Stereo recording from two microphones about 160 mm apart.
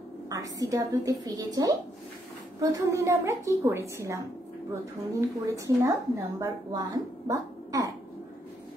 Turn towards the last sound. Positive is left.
turn(degrees=-25)  # may be behind; listen again after turning